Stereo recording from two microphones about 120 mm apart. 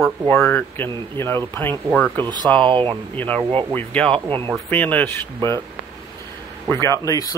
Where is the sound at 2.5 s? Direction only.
45° right (ahead or behind).